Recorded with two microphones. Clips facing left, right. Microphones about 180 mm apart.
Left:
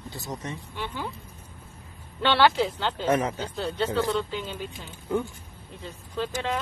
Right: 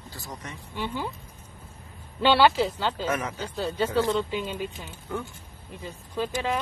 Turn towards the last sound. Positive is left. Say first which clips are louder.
# right 1 dB
turn(degrees=-10)  # may be behind; listen again after turning